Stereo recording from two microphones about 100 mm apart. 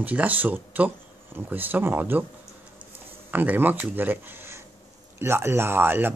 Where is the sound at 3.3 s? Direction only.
20° right (ahead or behind).